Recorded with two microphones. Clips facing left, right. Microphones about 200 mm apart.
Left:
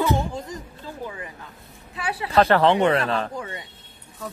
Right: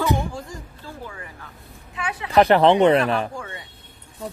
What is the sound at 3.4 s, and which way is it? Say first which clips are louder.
Speech: left 2 dB; 20° left (ahead or behind).